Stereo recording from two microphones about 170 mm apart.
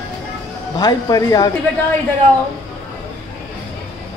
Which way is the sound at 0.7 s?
20° left (ahead or behind).